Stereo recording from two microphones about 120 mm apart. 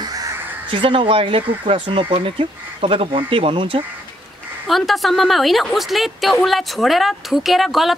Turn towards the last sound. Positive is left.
turn(degrees=0)  # may be behind; listen again after turning